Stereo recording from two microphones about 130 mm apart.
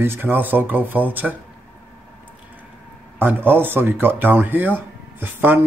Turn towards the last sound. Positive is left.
turn(degrees=-15)  # may be behind; listen again after turning